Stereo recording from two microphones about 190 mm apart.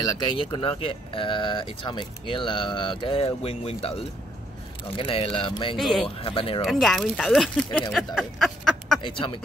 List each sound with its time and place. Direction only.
0.0 s speech: 25° left (ahead or behind)
5.8 s speech: centre (ahead or behind)
6.0 s speech: 30° left (ahead or behind)
6.6 s speech: centre (ahead or behind)